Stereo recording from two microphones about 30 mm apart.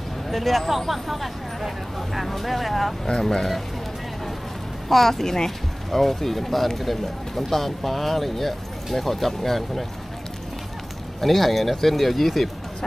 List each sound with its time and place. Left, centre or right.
0.3 s speech: centre
3.1 s speech: centre
4.8 s speech: centre
11.1 s speech: centre